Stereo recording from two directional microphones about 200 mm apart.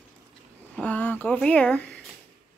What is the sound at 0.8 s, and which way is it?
Speech, 10° left (ahead or behind).